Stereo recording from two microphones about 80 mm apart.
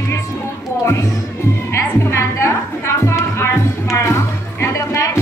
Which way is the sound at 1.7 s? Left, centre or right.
Left.